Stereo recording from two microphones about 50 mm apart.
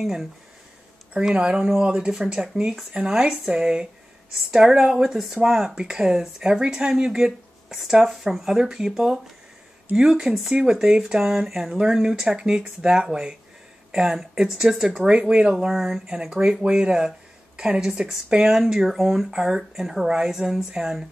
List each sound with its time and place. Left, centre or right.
0.0 s speech: centre
1.3 s speech: centre
16.1 s speech: centre